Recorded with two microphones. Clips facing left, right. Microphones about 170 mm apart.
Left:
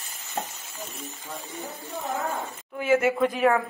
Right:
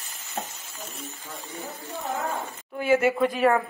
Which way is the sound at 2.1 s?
Centre (ahead or behind).